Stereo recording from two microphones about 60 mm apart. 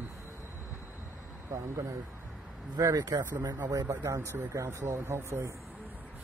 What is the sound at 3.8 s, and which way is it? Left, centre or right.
Speech, right.